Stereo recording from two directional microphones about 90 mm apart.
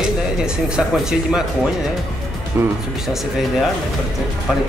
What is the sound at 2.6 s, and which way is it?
Speech, 25° right (ahead or behind).